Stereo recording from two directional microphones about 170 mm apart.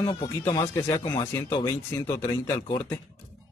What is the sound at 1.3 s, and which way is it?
Speech, 15° left (ahead or behind).